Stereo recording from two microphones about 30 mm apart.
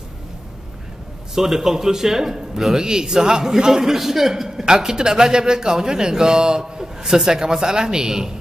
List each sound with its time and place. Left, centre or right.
1.3 s speech: centre
3.9 s a man's voice: centre